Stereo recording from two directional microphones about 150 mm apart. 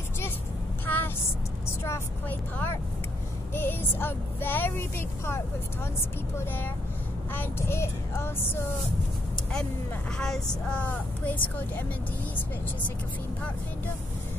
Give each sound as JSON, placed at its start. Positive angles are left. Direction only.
{"t": 0.8, "sound": "a sound", "side_deg": 10}
{"t": 1.8, "sound": "vehicle", "side_deg": 15}
{"t": 3.5, "sound": "speech", "side_deg": 15}
{"t": 10.1, "sound": "speech", "side_deg": 5}